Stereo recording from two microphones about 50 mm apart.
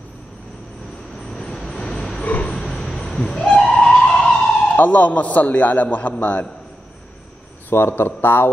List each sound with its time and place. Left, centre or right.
1.3 s vehicle: centre
2.4 s a sound: centre
4.2 s emergency vehicle: centre
4.7 s a man's voice: left
7.7 s speech: left